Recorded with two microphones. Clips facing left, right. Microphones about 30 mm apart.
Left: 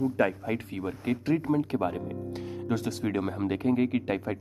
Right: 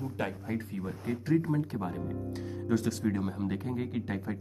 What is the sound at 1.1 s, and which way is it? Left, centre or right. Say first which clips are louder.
Speech: left 5 dB; left.